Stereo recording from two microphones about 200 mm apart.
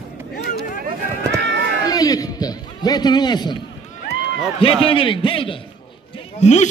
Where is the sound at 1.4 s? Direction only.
60° right (ahead or behind).